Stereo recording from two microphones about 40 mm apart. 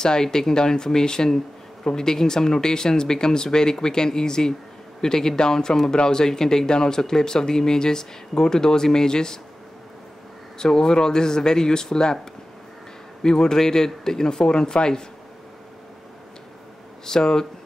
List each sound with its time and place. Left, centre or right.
0.0 s speech: centre
10.6 s speech: centre
13.2 s speech: centre
17.0 s speech: centre